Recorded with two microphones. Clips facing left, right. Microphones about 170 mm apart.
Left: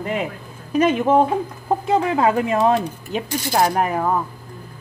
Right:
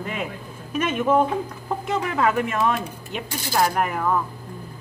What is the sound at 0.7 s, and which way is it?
Speech, 35° left (ahead or behind).